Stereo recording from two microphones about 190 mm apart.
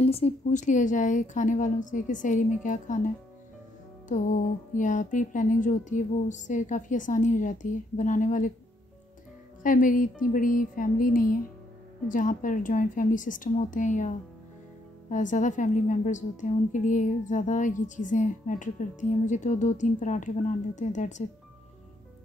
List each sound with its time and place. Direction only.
0.0 s a woman's voice: 30° left (ahead or behind)
4.7 s a woman's voice: 40° left (ahead or behind)
9.6 s a woman's voice: 45° left (ahead or behind)